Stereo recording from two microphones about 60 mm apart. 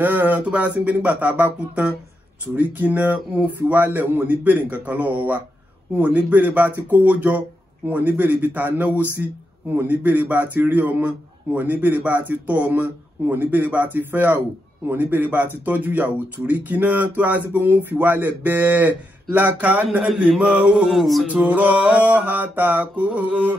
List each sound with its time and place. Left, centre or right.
0.0 s a man's voice: right
20.7 s male singing: centre
21.3 s speech: right